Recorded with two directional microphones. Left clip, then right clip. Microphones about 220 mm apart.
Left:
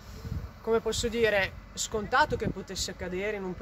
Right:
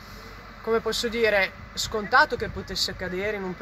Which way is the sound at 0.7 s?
5° left (ahead or behind).